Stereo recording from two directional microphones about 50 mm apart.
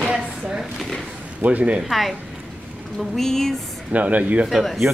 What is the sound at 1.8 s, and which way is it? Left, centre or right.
A woman's voice, centre.